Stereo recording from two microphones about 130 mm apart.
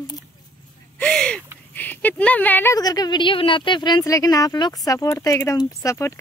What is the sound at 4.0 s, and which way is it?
Speech, 25° left (ahead or behind).